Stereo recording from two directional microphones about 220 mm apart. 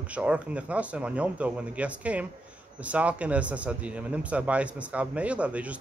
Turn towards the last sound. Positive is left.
turn(degrees=-5)  # may be behind; listen again after turning